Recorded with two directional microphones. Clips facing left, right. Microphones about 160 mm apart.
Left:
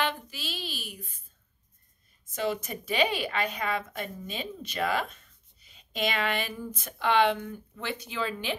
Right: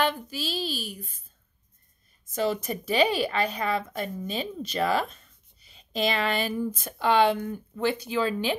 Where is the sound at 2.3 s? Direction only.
40° right (ahead or behind).